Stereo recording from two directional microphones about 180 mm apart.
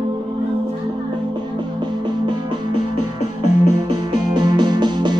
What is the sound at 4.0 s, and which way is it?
Music, 25° right (ahead or behind).